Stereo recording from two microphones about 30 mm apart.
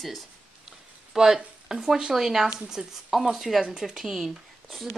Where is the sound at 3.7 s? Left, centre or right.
Centre.